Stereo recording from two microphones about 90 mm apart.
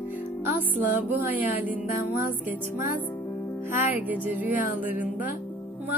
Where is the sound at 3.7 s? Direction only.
20° right (ahead or behind).